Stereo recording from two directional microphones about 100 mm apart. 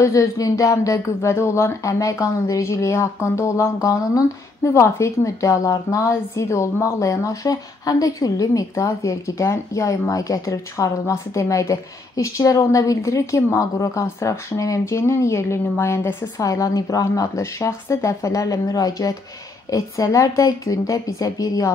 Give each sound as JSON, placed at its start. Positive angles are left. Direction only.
{"t": 0.0, "sound": "speech", "side_deg": 30}